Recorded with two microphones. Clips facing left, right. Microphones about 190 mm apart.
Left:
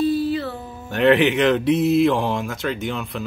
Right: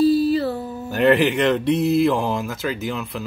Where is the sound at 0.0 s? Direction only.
35° right (ahead or behind).